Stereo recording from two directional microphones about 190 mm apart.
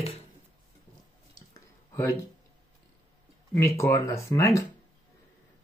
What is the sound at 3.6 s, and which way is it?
Speech, 15° left (ahead or behind).